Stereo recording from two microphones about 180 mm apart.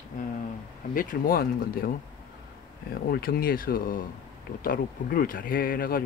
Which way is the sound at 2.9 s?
55° left (ahead or behind).